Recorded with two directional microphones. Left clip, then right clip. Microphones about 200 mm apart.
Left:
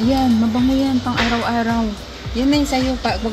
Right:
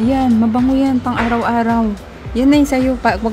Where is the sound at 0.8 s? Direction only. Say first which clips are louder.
Right 2 dB; 35° right (ahead or behind).